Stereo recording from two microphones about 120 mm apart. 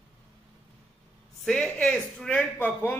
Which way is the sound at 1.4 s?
5° left (ahead or behind).